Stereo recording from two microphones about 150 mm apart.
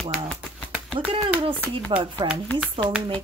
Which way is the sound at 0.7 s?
5° right (ahead or behind).